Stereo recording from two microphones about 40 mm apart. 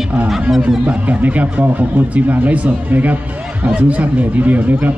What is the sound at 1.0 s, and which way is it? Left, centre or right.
A man's voice, right.